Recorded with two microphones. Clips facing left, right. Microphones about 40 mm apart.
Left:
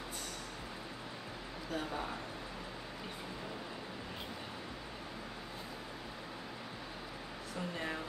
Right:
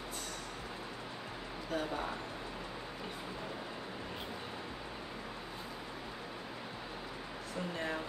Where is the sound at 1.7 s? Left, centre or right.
Centre.